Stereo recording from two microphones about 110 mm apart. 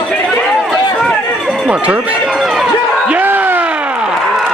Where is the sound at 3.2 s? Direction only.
15° right (ahead or behind).